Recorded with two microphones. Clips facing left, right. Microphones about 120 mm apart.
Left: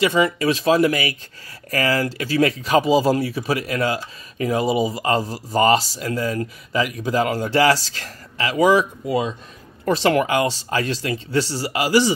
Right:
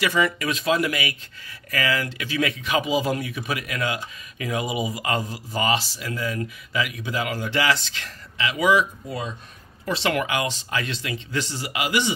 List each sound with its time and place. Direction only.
0.0 s speech: 25° left (ahead or behind)
9.0 s speech: 90° left
9.8 s speech: 40° left (ahead or behind)